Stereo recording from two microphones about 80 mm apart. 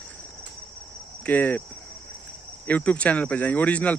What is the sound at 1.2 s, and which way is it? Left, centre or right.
Speech, centre.